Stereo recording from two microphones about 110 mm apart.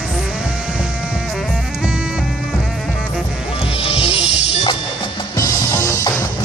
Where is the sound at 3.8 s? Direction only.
65° left (ahead or behind).